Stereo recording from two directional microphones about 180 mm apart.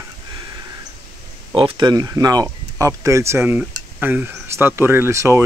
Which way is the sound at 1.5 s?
30° right (ahead or behind).